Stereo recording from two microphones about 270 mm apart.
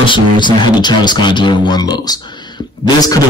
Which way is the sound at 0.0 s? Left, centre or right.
Centre.